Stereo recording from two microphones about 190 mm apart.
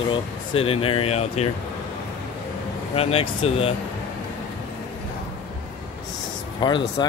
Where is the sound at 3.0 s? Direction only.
30° left (ahead or behind).